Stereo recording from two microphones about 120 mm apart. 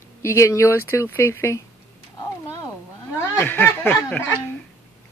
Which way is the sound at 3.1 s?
20° left (ahead or behind).